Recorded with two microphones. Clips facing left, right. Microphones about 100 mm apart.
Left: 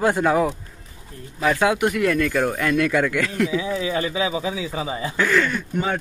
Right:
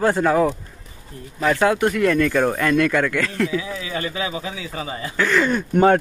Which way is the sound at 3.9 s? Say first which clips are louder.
Left 3 dB; 5° left (ahead or behind).